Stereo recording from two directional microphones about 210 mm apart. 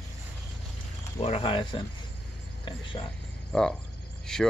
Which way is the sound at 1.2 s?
25° left (ahead or behind).